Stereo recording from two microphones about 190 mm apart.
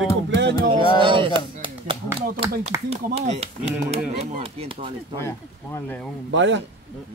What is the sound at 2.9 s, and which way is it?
Speech, 35° right (ahead or behind).